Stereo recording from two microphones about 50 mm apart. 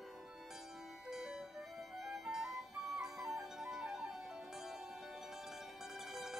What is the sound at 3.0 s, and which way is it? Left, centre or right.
Music, centre.